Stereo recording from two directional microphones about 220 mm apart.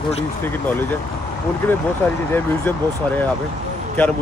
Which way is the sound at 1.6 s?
10° left (ahead or behind).